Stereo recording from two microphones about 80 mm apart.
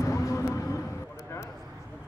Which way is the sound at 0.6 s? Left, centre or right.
Left.